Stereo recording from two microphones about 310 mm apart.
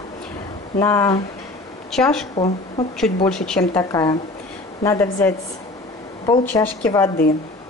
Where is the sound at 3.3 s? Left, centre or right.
Centre.